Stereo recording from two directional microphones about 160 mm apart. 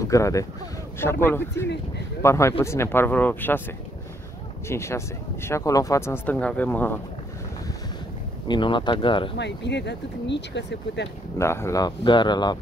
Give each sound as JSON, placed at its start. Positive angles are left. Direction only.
{"t": 0.0, "sound": "speech", "side_deg": 20}
{"t": 4.6, "sound": "speech", "side_deg": 15}
{"t": 8.5, "sound": "speech", "side_deg": 30}
{"t": 9.4, "sound": "speech", "side_deg": 90}
{"t": 11.3, "sound": "speech", "side_deg": 15}